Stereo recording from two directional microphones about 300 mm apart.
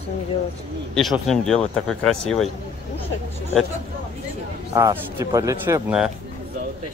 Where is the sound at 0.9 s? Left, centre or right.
Centre.